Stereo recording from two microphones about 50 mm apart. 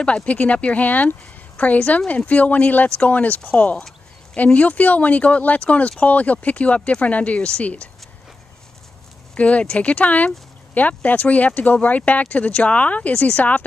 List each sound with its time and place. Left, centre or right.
0.0 s speech: left
3.7 s a sound: centre
4.6 s speech: left
9.3 s speech: left